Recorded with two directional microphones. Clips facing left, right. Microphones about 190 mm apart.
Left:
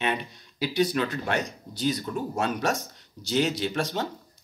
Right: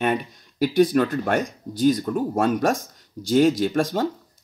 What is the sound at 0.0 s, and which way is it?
Speech, 50° right (ahead or behind).